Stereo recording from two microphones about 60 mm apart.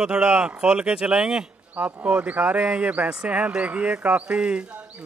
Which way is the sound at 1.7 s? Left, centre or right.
Right.